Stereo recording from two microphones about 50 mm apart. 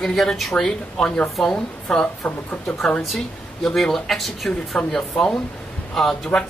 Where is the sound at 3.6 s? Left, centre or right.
Centre.